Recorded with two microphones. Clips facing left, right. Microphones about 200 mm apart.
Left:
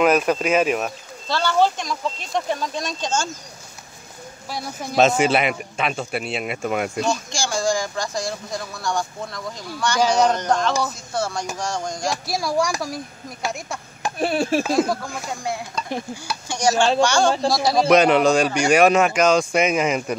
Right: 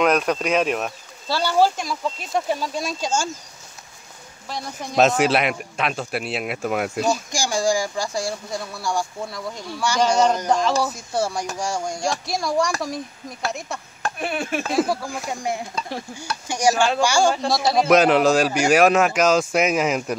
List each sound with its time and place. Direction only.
0.0 s a man's voice: 5° left (ahead or behind)
1.2 s speech: 10° right (ahead or behind)
4.5 s a man's voice: 5° left (ahead or behind)
7.3 s a man's voice: 15° right (ahead or behind)
12.0 s a man's voice: 5° left (ahead or behind)
14.1 s speech: 35° left (ahead or behind)
14.7 s a man's voice: 5° right (ahead or behind)
16.4 s a man's voice: 15° right (ahead or behind)